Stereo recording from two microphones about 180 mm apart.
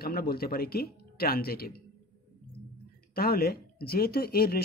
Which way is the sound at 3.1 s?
55° left (ahead or behind).